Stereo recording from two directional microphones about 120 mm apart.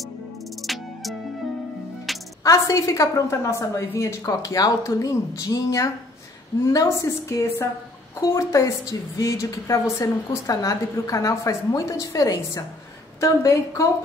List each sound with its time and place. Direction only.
0.6 s music: centre (ahead or behind)
2.4 s a woman's voice: 25° left (ahead or behind)